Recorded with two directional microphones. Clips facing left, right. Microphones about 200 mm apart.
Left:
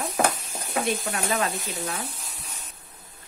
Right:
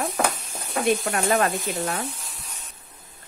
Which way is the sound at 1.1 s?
55° right (ahead or behind).